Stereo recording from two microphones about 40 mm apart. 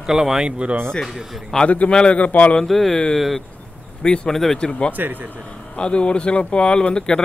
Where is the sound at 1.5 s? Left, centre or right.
Centre.